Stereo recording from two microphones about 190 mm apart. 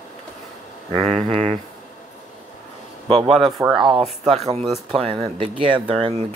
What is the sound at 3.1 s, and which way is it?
Speech, 30° right (ahead or behind).